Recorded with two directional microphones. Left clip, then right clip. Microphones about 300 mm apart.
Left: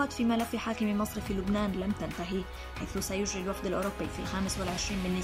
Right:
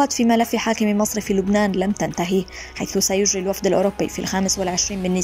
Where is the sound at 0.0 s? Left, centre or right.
Centre.